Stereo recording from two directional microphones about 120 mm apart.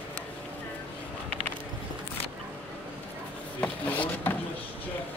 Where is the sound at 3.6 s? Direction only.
15° left (ahead or behind).